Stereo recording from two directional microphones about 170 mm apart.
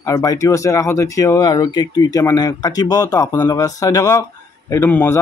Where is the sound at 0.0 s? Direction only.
20° left (ahead or behind).